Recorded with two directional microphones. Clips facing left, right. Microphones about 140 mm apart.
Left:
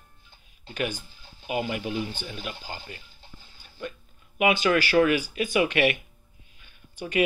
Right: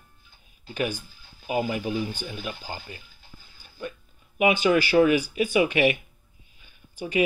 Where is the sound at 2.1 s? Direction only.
10° right (ahead or behind).